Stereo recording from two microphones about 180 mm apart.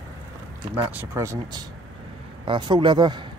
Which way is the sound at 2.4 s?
25° right (ahead or behind).